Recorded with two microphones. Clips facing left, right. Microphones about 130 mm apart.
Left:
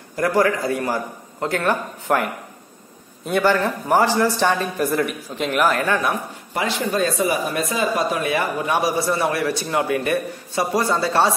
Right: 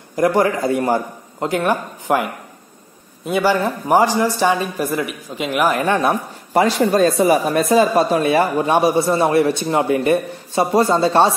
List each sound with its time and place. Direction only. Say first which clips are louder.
0.1 s speech: right 3 dB; 20° right (ahead or behind)
3.3 s speech: right 1 dB; 5° right (ahead or behind); by 6.1 s 25° right (ahead or behind)
6.5 s speech: right 8 dB; 40° right (ahead or behind)